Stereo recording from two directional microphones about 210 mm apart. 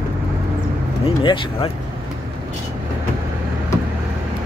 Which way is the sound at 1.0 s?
25° left (ahead or behind).